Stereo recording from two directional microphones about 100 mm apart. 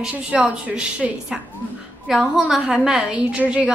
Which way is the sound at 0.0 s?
10° right (ahead or behind).